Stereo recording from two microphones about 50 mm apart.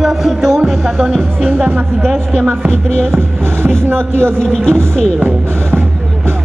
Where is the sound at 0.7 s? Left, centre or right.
Centre.